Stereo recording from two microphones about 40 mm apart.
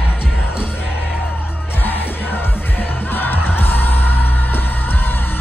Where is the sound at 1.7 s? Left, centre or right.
Left.